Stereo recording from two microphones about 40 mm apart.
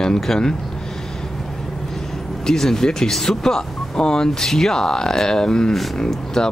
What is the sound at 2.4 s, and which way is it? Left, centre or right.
Speech, centre.